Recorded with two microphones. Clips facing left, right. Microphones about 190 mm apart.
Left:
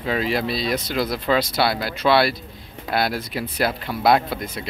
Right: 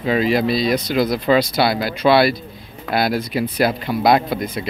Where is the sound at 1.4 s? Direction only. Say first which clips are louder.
Right 3 dB; centre (ahead or behind).